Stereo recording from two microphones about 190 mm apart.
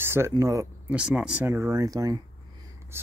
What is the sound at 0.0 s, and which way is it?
Speech, 15° right (ahead or behind).